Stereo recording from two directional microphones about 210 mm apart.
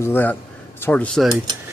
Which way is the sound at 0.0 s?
10° left (ahead or behind).